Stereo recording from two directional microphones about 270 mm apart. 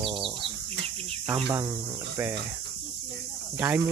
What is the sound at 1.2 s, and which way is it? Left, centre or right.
Speech, centre.